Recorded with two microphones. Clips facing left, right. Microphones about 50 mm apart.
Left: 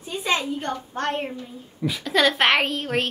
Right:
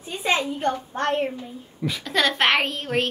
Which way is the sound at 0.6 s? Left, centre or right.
Right.